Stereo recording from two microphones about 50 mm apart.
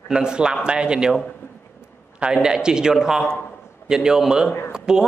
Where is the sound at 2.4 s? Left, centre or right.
Centre.